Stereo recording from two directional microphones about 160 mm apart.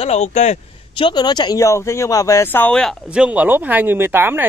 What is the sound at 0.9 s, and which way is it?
Speech, 30° left (ahead or behind).